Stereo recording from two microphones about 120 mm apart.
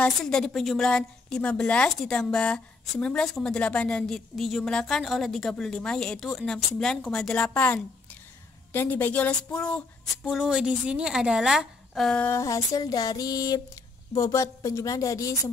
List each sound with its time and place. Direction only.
0.0 s a woman's voice: 5° left (ahead or behind)
10.2 s a woman's voice: 5° right (ahead or behind)
12.2 s a sound: 25° left (ahead or behind)